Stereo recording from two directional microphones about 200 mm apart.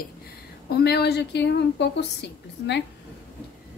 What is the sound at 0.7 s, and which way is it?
A woman's voice, 55° left (ahead or behind).